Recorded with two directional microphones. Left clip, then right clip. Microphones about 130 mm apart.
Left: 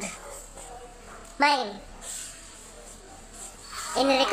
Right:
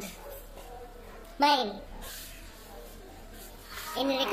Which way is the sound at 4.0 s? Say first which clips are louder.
Left 7 dB; 15° right (ahead or behind).